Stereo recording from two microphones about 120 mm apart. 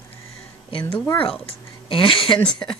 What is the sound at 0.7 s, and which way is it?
Speech, 45° left (ahead or behind).